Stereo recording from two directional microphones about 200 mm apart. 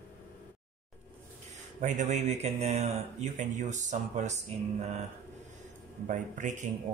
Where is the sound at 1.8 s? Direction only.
35° right (ahead or behind).